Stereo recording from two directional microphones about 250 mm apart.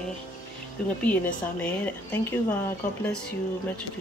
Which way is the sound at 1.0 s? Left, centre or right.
Centre.